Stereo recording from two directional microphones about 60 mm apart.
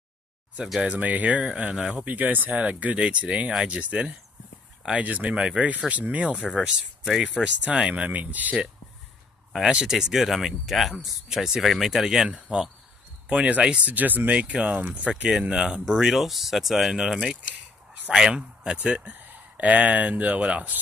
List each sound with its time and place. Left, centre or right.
0.8 s speech: right
2.0 s speech: right
9.6 s speech: centre
18.3 s speech: centre